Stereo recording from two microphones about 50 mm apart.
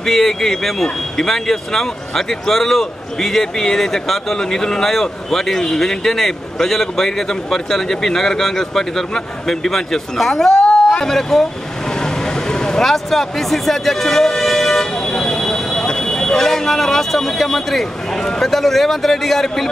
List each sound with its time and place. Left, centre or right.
0.0 s speech: centre
10.7 s a sound: centre
11.9 s speech: centre